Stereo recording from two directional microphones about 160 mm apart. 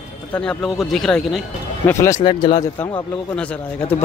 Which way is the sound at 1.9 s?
20° left (ahead or behind).